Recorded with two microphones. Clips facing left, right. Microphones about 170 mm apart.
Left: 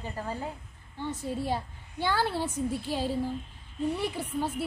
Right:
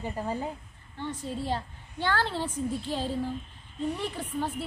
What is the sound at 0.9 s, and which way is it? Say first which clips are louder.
A woman's voice: left 1 dB; 10° left (ahead or behind).